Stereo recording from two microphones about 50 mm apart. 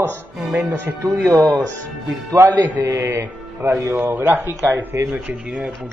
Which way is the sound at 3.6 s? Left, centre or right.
Right.